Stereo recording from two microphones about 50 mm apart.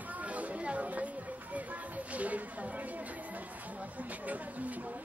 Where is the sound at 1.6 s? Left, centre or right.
Right.